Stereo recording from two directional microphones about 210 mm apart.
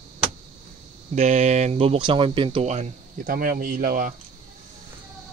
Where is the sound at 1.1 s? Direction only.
30° right (ahead or behind).